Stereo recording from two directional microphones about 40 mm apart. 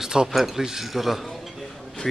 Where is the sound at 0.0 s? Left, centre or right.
Centre.